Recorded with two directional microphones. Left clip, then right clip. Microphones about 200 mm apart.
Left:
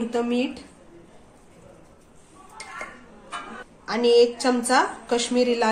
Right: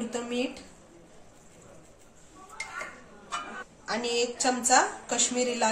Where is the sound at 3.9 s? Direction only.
25° left (ahead or behind).